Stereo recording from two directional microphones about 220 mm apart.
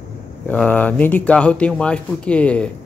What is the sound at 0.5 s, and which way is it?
Speech, 5° left (ahead or behind).